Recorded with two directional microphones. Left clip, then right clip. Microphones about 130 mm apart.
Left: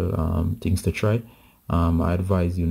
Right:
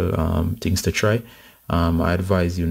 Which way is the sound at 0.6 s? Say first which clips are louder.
Right 5 dB; 5° right (ahead or behind).